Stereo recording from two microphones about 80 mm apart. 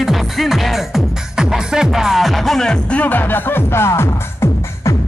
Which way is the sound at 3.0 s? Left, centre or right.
Left.